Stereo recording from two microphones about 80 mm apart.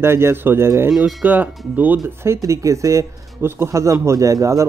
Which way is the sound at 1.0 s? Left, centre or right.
Centre.